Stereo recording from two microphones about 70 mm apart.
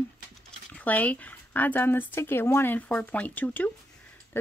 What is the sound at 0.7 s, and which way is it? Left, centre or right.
Speech, left.